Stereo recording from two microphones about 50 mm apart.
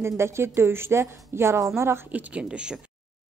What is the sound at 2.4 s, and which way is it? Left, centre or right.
Speech, centre.